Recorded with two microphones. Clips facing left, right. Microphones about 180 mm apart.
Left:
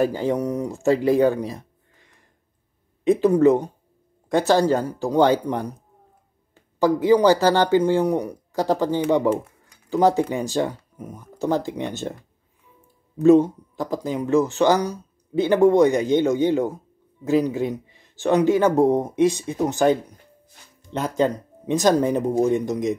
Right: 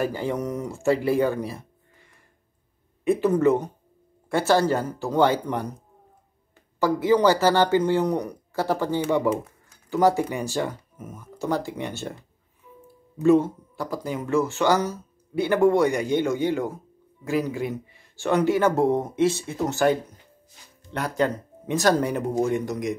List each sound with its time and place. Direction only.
0.0 s speech: 15° left (ahead or behind)
3.0 s speech: 15° left (ahead or behind)
6.8 s speech: 15° left (ahead or behind)